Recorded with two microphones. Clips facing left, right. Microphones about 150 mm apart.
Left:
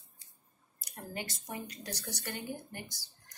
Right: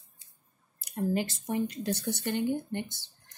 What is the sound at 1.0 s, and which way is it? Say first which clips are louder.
Speech: right 13 dB; 25° right (ahead or behind).